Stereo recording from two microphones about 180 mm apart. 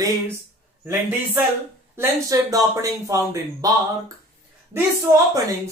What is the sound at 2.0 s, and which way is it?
A woman's voice, 20° right (ahead or behind).